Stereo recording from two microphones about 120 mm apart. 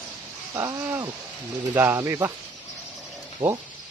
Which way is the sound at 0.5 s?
25° right (ahead or behind).